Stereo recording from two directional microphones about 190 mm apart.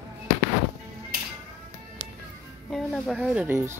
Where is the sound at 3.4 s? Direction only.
15° right (ahead or behind).